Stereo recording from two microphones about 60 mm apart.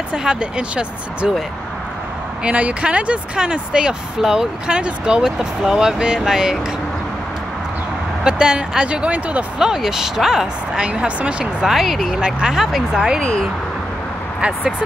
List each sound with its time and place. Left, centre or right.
0.1 s speech: centre
2.4 s speech: right
8.2 s speech: centre
9.6 s speech: centre
10.9 s speech: right
11.6 s speech: centre